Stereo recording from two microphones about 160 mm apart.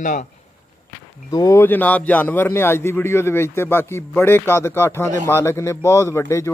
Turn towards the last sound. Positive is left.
turn(degrees=15)  # may be behind; listen again after turning